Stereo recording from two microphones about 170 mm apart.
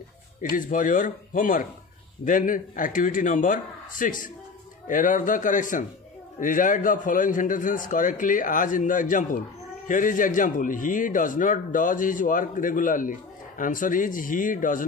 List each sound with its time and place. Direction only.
0.4 s a man's voice: 50° left (ahead or behind)